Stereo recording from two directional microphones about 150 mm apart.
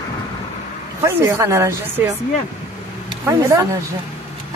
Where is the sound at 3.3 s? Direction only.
20° right (ahead or behind).